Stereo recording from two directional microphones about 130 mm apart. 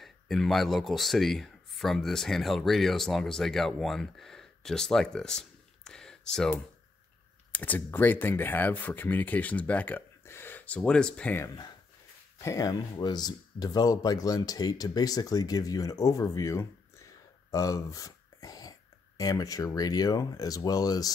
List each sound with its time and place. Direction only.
0.0 s speech: centre (ahead or behind)
11.4 s speech: 35° left (ahead or behind)